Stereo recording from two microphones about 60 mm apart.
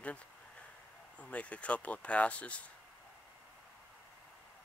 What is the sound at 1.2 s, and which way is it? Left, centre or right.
Speech, left.